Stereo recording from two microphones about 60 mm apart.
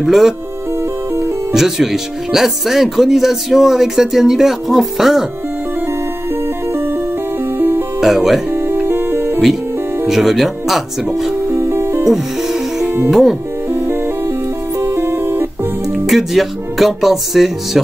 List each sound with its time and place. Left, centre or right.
0.0 s speech: centre
1.5 s speech: centre
6.7 s music: right
8.0 s speech: centre
8.5 s music: right
10.0 s speech: centre
11.5 s music: right
12.1 s music: centre
13.1 s speech: centre
13.7 s music: right
16.1 s speech: centre